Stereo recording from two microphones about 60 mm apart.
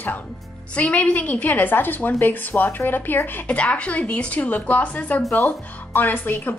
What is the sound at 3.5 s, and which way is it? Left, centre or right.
Speech, left.